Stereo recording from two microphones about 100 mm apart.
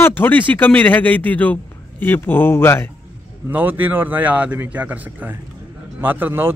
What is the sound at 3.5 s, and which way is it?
A man's voice, 20° right (ahead or behind).